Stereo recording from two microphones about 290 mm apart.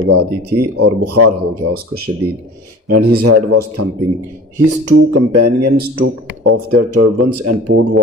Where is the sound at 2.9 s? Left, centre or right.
Right.